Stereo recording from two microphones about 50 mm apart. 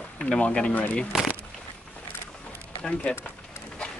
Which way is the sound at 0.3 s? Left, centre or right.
Centre.